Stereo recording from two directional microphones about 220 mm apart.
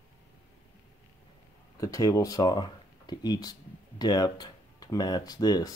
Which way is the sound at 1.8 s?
15° left (ahead or behind).